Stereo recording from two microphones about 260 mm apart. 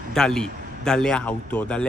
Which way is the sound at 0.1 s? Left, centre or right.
Centre.